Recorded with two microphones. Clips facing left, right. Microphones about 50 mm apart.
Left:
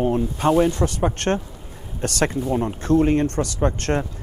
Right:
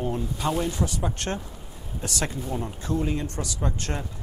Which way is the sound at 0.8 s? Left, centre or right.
Left.